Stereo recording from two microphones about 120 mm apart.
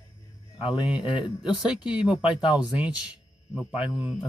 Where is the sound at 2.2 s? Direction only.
40° left (ahead or behind).